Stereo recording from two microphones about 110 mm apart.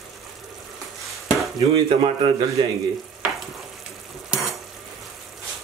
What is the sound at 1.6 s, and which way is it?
Speech, 55° right (ahead or behind).